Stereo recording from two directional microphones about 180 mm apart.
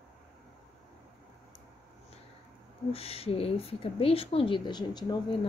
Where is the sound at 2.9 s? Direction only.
35° left (ahead or behind).